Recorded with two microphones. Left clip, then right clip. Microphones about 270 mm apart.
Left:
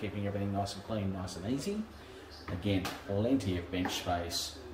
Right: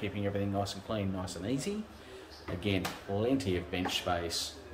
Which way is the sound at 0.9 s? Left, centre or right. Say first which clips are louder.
Right 4 dB; centre.